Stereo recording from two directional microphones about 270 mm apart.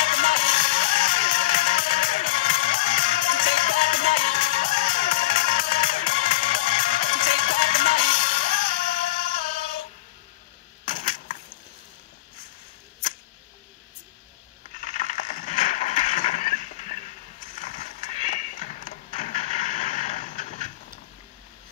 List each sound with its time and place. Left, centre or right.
0.0 s music: left
10.9 s coin: left
14.7 s a sound: left